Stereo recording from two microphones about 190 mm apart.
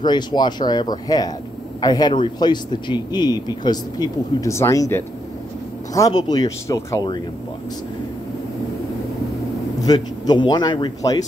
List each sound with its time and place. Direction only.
0.0 s speech: 25° left (ahead or behind)
9.8 s speech: 20° left (ahead or behind)